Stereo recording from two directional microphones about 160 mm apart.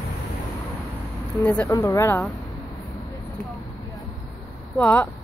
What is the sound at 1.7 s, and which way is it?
Speech, 20° left (ahead or behind).